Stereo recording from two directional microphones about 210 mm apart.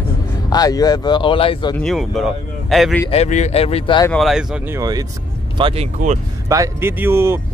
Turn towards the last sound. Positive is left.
turn(degrees=-10)  # may be behind; listen again after turning